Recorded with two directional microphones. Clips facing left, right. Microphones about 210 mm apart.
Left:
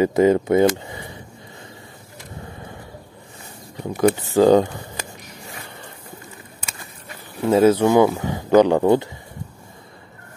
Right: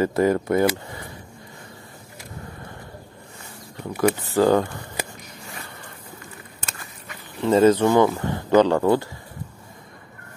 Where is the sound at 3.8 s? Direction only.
20° left (ahead or behind).